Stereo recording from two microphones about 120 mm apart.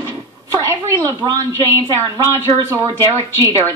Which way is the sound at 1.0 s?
30° right (ahead or behind).